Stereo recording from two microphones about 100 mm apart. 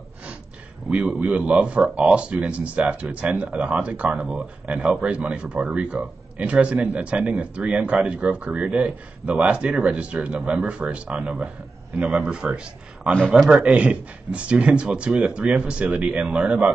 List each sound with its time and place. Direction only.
0.8 s speech: 10° right (ahead or behind)